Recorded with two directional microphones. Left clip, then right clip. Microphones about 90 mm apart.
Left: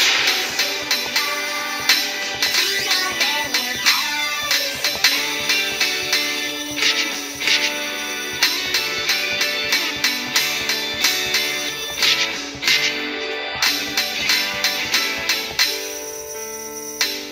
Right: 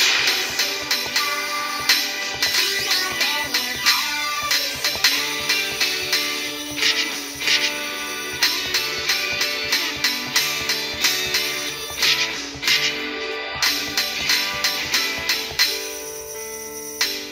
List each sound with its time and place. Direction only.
0.0 s music: 25° left (ahead or behind)